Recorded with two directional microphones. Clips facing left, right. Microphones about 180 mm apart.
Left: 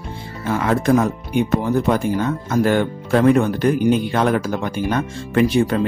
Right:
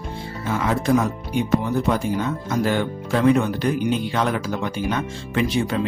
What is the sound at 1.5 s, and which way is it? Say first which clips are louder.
Speech: left 1 dB; 50° left (ahead or behind).